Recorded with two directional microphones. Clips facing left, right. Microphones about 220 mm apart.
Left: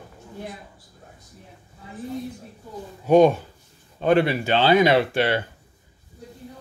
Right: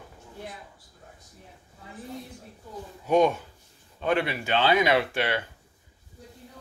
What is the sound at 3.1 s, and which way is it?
Speech, 35° left (ahead or behind).